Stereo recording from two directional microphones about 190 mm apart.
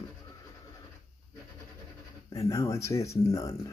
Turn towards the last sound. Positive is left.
turn(degrees=15)  # may be behind; listen again after turning